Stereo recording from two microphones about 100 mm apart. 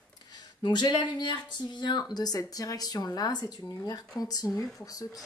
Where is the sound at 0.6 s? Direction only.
50° left (ahead or behind).